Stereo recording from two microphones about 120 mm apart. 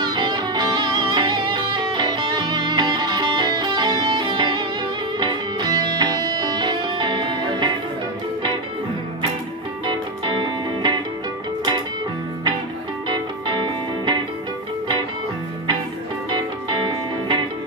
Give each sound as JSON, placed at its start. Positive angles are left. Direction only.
{"t": 0.0, "sound": "music", "side_deg": -40}
{"t": 9.8, "sound": "music", "side_deg": -40}
{"t": 13.1, "sound": "music", "side_deg": -40}
{"t": 16.3, "sound": "music", "side_deg": -40}